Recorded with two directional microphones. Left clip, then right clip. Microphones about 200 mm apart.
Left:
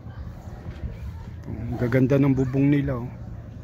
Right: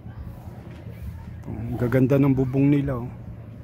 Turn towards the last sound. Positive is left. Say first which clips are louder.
# right 1 dB
turn(degrees=-5)  # may be behind; listen again after turning